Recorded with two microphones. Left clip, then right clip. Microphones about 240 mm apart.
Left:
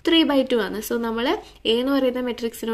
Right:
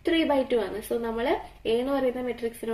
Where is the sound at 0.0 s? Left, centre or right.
Left.